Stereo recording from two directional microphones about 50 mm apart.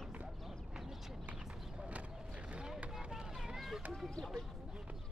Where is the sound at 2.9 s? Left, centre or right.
Centre.